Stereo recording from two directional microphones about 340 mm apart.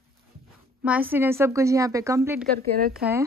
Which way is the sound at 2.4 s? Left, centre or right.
Right.